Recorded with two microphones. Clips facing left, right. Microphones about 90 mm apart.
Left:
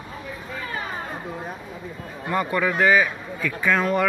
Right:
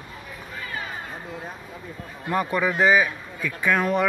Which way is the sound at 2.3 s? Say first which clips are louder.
Even; 10° right (ahead or behind).